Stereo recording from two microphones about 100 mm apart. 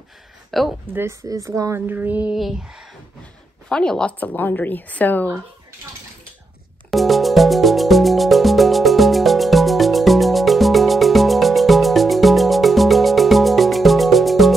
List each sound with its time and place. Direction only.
0.5 s speech: centre (ahead or behind)
0.9 s speech: 30° right (ahead or behind)
2.3 s speech: 5° right (ahead or behind)
3.6 s a woman's voice: 5° left (ahead or behind)
6.9 s music: centre (ahead or behind)